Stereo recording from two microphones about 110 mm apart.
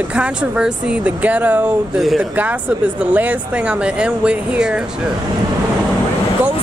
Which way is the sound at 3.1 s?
15° right (ahead or behind).